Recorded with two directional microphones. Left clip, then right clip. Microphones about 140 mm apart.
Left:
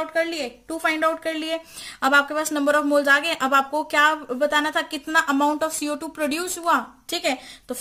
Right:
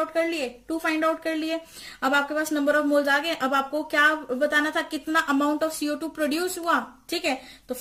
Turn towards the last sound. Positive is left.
turn(degrees=45)  # may be behind; listen again after turning